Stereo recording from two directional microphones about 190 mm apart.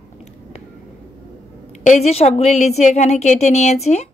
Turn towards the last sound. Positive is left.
turn(degrees=35)  # may be behind; listen again after turning